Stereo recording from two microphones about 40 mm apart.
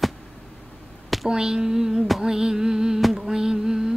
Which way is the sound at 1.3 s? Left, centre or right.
Centre.